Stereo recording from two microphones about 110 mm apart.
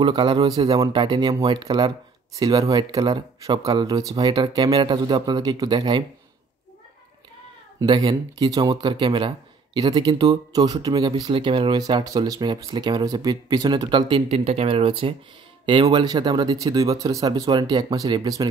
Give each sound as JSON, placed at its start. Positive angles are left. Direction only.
{"t": 0.0, "sound": "speech", "side_deg": -45}
{"t": 7.8, "sound": "speech", "side_deg": -45}
{"t": 14.3, "sound": "speech", "side_deg": -65}